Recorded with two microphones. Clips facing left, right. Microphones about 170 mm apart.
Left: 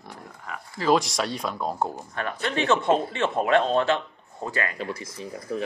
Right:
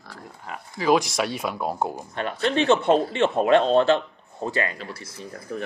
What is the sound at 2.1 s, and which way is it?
Speech, 25° right (ahead or behind).